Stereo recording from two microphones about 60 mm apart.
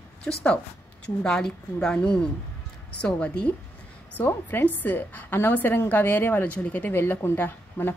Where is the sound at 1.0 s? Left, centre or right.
Centre.